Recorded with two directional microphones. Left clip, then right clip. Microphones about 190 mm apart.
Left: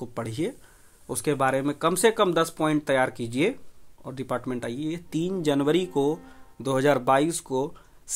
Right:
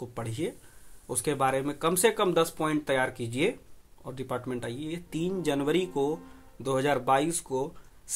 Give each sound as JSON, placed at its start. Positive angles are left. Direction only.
{"t": 0.0, "sound": "speech", "side_deg": 45}